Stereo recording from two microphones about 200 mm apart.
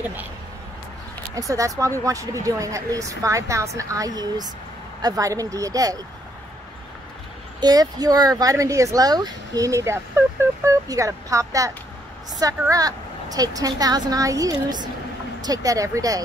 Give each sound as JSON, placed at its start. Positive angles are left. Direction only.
{"t": 1.3, "sound": "speech", "side_deg": -15}
{"t": 7.6, "sound": "speech", "side_deg": -20}